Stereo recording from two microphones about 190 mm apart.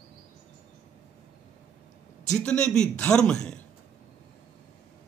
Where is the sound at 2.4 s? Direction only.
5° left (ahead or behind).